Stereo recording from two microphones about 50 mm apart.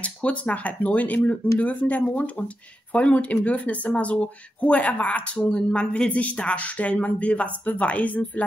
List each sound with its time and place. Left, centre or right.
0.0 s speech: left